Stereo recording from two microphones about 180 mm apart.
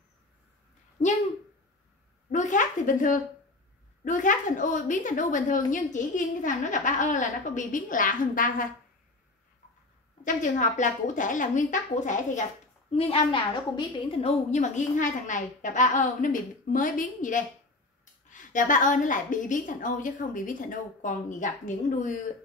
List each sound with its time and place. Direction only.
1.0 s speech: 40° left (ahead or behind)
2.3 s a sound: 45° left (ahead or behind)
4.0 s a woman's voice: 45° left (ahead or behind)
10.2 s a woman's voice: 45° left (ahead or behind)
12.9 s a woman's voice: 30° left (ahead or behind)
14.5 s a woman's voice: 40° left (ahead or behind)